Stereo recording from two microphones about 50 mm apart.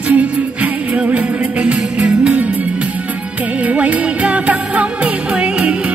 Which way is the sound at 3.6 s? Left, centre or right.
Right.